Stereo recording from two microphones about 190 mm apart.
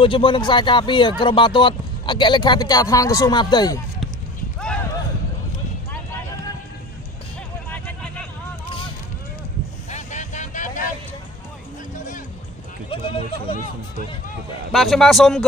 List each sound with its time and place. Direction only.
0.0 s speech: 25° left (ahead or behind)
7.7 s a sound: 5° left (ahead or behind)
9.8 s vehicle: 40° left (ahead or behind)
11.9 s music: 45° left (ahead or behind)
12.9 s a sound: 30° left (ahead or behind)
14.7 s a man's voice: centre (ahead or behind)